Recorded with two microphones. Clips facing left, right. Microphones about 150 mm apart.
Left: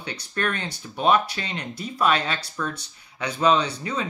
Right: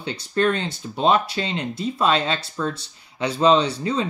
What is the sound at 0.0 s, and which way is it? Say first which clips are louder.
Speech: right 7 dB; 25° right (ahead or behind).